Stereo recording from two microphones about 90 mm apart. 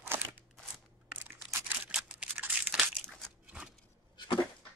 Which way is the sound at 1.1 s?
25° right (ahead or behind).